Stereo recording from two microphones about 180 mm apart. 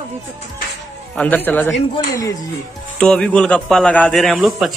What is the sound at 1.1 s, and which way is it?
Speech, 10° left (ahead or behind).